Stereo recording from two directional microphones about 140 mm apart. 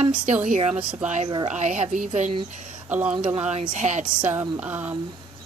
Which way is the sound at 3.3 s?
50° right (ahead or behind).